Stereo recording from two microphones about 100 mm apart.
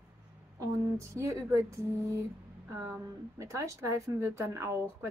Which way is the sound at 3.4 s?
30° right (ahead or behind).